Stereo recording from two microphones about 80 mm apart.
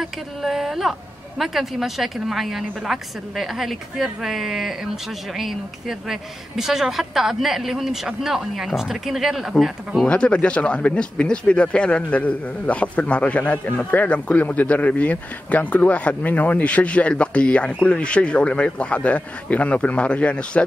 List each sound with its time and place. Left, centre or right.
0.0 s a woman's voice: centre
10.0 s speech: centre